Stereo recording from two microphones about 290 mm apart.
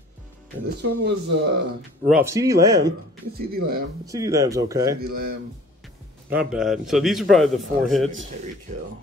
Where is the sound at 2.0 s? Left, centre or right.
Centre.